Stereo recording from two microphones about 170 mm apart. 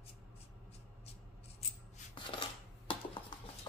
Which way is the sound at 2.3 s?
30° left (ahead or behind).